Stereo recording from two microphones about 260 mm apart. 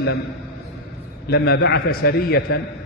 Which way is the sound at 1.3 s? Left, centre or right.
Left.